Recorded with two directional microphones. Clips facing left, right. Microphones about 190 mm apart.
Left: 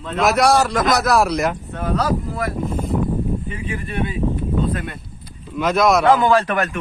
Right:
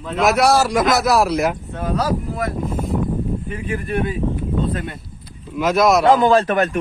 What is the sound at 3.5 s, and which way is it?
Speech, 45° right (ahead or behind).